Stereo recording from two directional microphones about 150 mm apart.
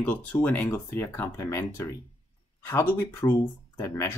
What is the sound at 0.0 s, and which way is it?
Speech, 10° left (ahead or behind).